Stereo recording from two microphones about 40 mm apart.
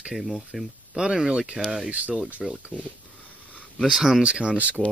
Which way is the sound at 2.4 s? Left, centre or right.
Right.